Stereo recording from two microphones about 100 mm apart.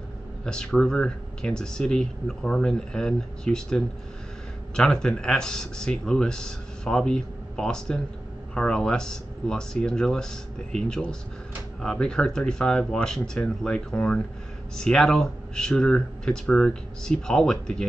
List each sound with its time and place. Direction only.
0.5 s speech: 5° left (ahead or behind)